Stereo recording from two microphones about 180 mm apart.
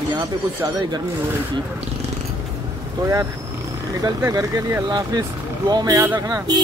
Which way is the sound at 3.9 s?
20° right (ahead or behind).